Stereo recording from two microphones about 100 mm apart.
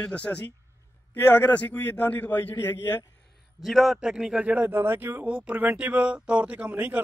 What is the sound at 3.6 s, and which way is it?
A man's voice, centre (ahead or behind).